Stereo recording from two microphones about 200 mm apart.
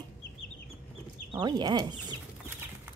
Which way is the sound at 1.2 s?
20° right (ahead or behind).